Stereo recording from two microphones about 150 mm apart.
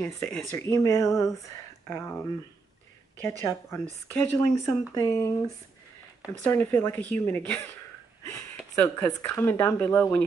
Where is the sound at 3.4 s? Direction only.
20° left (ahead or behind).